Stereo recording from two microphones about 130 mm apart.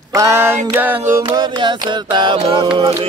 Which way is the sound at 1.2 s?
30° right (ahead or behind).